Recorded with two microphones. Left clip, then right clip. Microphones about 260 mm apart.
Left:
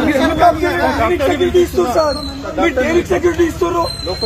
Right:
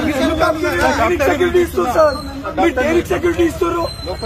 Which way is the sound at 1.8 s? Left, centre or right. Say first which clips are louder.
Right 1 dB; centre.